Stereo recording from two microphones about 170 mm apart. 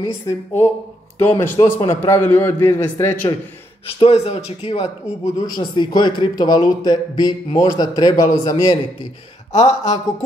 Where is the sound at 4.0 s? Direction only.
35° left (ahead or behind).